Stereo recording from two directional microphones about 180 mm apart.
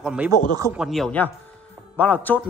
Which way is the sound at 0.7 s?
Centre (ahead or behind).